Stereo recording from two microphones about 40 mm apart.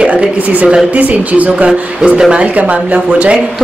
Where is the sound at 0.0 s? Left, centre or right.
Right.